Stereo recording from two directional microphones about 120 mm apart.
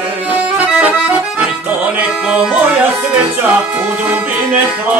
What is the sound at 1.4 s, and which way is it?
Music, 10° right (ahead or behind).